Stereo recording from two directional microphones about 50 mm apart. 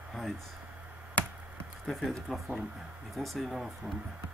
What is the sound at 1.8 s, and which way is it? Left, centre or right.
Speech, centre.